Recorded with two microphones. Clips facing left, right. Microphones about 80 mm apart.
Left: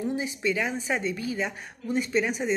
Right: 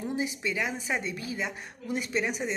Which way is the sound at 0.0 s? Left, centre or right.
Centre.